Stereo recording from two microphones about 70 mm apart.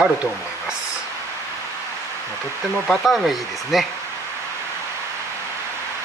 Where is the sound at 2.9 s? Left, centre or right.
Centre.